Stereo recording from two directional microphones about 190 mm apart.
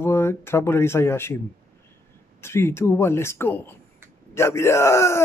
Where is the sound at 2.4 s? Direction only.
15° left (ahead or behind).